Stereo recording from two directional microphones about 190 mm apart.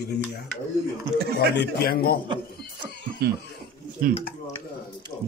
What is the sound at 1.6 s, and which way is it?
Speech, 55° left (ahead or behind).